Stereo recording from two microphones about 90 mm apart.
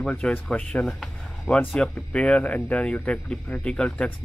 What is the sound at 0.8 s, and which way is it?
Speech, 5° left (ahead or behind).